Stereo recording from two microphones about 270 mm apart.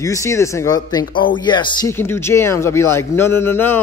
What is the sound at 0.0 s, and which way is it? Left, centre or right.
A man's voice, centre.